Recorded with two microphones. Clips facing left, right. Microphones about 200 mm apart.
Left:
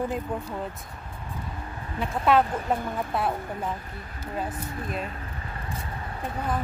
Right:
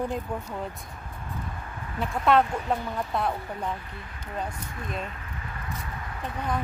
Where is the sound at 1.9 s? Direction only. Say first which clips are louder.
Even; centre (ahead or behind).